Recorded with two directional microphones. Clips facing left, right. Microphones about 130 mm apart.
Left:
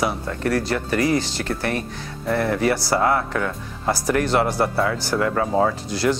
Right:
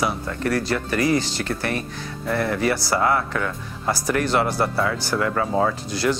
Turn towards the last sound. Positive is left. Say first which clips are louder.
# left 1 dB
turn(degrees=25)  # may be behind; listen again after turning